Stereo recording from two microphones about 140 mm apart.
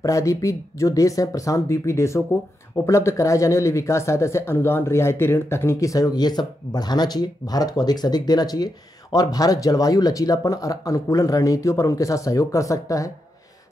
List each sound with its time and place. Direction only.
0.0 s speech: 20° left (ahead or behind)